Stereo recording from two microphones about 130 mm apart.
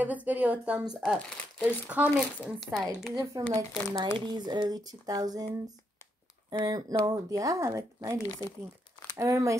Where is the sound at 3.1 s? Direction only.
30° right (ahead or behind).